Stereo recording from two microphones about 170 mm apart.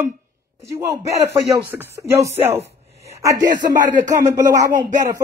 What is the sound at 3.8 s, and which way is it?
Speech, 45° right (ahead or behind).